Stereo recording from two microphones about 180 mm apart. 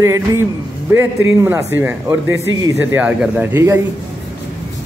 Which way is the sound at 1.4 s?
10° right (ahead or behind).